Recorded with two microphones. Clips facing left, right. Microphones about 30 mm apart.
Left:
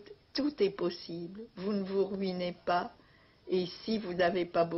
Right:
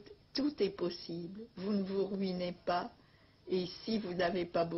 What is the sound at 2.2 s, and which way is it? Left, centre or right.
Speech, centre.